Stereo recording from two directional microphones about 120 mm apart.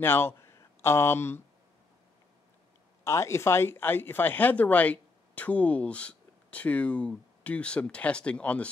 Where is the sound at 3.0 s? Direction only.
25° left (ahead or behind).